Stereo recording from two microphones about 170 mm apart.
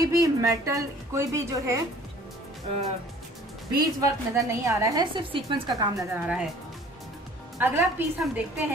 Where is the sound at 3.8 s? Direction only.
20° right (ahead or behind).